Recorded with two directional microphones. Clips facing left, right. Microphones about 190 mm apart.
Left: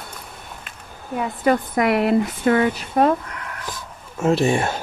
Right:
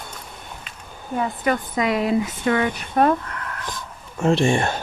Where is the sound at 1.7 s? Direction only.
65° left (ahead or behind).